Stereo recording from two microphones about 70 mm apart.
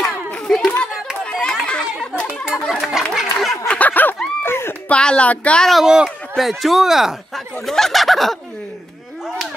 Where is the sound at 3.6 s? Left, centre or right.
Left.